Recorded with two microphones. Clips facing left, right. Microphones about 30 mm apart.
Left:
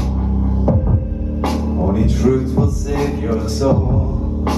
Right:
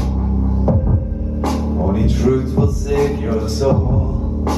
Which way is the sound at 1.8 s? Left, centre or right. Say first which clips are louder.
Left 1 dB; centre.